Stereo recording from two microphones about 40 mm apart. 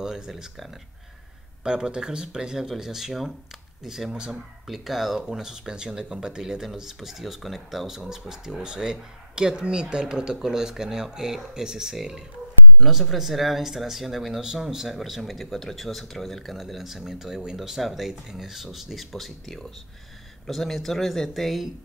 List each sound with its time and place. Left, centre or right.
0.0 s a sound: centre
1.6 s speech: centre
14.9 s speech: centre